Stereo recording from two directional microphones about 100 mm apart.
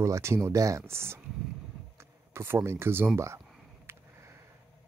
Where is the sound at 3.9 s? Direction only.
20° right (ahead or behind).